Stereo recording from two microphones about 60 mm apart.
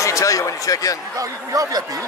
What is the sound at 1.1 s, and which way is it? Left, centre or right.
Speech, right.